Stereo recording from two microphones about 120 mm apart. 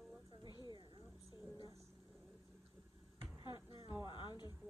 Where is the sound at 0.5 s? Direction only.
40° left (ahead or behind).